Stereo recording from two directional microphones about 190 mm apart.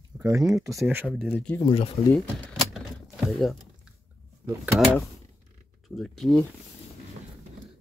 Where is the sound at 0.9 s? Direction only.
5° right (ahead or behind).